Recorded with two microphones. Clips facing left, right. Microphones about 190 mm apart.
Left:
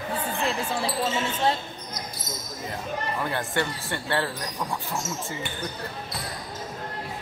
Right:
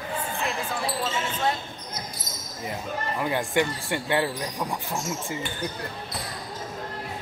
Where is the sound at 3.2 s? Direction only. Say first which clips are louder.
Right 6 dB; 15° right (ahead or behind).